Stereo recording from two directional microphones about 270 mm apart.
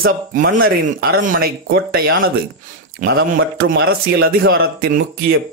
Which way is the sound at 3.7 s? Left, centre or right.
Right.